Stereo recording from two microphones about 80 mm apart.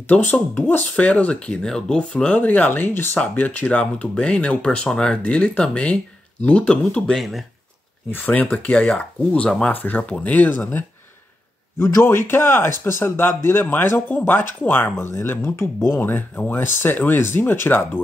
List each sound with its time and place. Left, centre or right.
0.1 s speech: left
7.2 s speech: centre
8.3 s speech: centre
11.8 s speech: left